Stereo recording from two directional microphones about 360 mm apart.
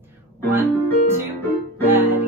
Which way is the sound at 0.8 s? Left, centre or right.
Centre.